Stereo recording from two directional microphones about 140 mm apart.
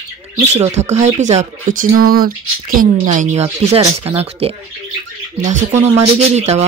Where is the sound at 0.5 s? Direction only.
55° right (ahead or behind).